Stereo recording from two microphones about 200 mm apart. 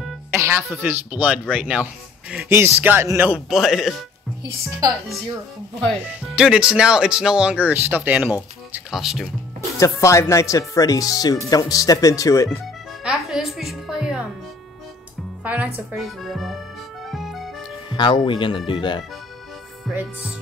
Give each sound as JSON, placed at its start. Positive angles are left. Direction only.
{"t": 0.7, "sound": "speech", "side_deg": -10}
{"t": 4.4, "sound": "a woman's voice", "side_deg": -20}
{"t": 6.0, "sound": "speech", "side_deg": -5}
{"t": 9.8, "sound": "speech", "side_deg": 15}
{"t": 13.0, "sound": "music", "side_deg": 0}
{"t": 15.4, "sound": "music", "side_deg": -5}
{"t": 17.8, "sound": "speech", "side_deg": 25}
{"t": 19.9, "sound": "speech", "side_deg": -10}